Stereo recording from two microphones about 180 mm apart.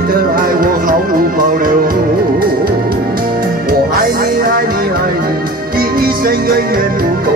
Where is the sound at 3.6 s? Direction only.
55° right (ahead or behind).